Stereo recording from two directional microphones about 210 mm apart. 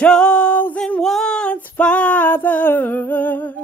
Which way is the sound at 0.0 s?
5° left (ahead or behind).